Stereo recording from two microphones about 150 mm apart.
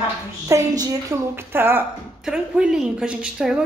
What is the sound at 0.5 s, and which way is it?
A woman's voice, 20° right (ahead or behind).